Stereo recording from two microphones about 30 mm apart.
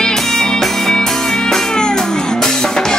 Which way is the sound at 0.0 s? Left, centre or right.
Centre.